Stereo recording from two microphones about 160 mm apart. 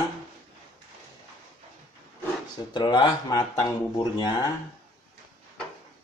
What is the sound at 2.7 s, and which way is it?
Speech, 25° left (ahead or behind).